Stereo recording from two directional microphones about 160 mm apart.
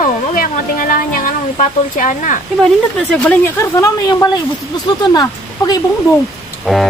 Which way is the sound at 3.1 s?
10° left (ahead or behind).